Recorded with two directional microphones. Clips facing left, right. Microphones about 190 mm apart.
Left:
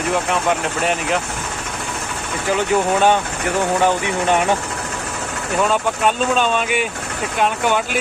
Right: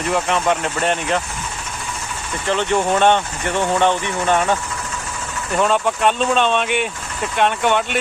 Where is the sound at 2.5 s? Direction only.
5° left (ahead or behind).